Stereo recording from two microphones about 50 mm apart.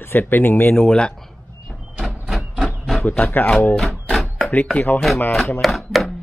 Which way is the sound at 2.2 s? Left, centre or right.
Centre.